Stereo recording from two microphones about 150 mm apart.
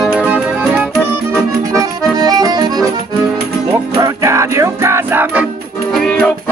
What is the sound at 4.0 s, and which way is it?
Music, 20° right (ahead or behind).